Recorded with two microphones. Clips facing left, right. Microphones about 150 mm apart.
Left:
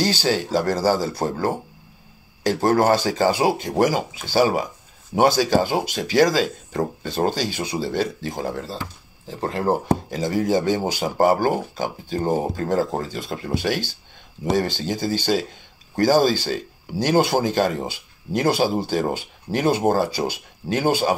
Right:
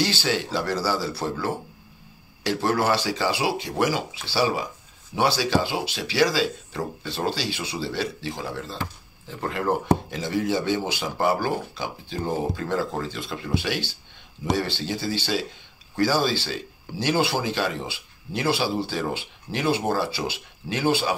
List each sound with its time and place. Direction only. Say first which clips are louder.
0.0 s speech: left 4 dB; 40° left (ahead or behind)